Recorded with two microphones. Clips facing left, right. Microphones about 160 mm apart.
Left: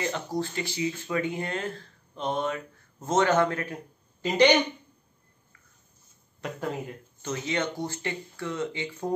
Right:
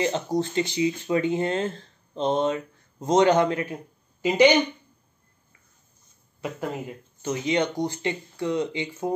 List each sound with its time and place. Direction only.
0.0 s speech: 20° right (ahead or behind)
6.4 s speech: 5° right (ahead or behind)